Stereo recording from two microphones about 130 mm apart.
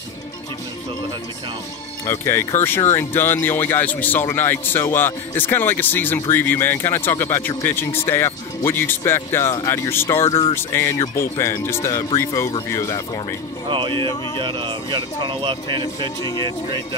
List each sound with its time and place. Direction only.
2.0 s speech: 20° left (ahead or behind)
10.2 s speech: 45° left (ahead or behind)
10.5 s speech: 20° left (ahead or behind)
13.7 s speech: 40° right (ahead or behind)